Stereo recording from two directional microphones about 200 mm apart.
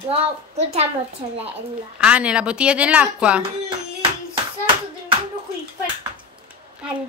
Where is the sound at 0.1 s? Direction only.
30° right (ahead or behind).